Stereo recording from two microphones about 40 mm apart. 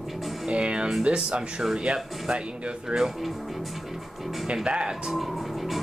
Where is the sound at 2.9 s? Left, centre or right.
Centre.